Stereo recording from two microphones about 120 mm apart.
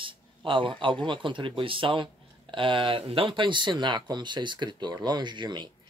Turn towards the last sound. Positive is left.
turn(degrees=-40)  # may be behind; listen again after turning